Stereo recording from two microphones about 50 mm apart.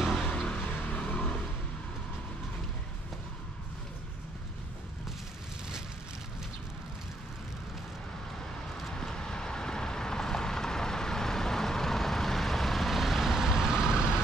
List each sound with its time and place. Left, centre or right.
0.0 s vehicle: centre
0.5 s vehicle: centre
8.8 s vehicle: centre